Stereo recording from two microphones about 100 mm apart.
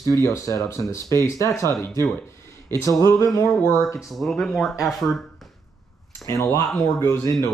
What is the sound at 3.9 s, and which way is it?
Speech, centre (ahead or behind).